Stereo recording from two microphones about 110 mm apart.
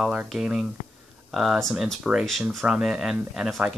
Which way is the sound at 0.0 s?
10° right (ahead or behind).